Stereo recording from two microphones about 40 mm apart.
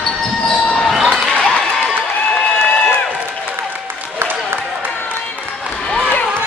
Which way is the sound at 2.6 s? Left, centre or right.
Left.